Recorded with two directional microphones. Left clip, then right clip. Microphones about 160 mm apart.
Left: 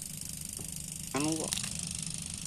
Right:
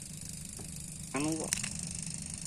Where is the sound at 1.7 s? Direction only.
40° right (ahead or behind).